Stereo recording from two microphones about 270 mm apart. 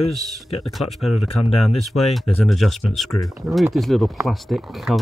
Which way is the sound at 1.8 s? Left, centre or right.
Centre.